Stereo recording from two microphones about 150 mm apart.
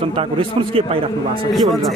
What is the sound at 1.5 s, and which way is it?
Speech, centre (ahead or behind).